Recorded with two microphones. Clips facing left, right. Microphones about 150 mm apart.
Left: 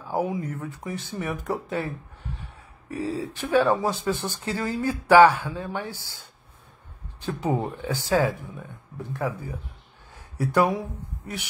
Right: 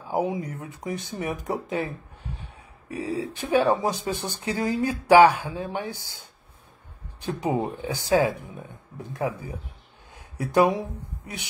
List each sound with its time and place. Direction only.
0.0 s speech: 20° right (ahead or behind)
7.2 s speech: 15° right (ahead or behind)
10.1 s a sound: 15° right (ahead or behind)